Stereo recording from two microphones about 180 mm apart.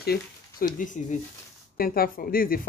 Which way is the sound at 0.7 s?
45° left (ahead or behind).